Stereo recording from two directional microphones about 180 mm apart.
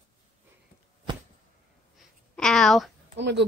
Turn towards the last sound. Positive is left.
turn(degrees=-80)